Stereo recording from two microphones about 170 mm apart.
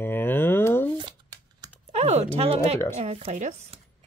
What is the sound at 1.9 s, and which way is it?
Speech, 40° right (ahead or behind).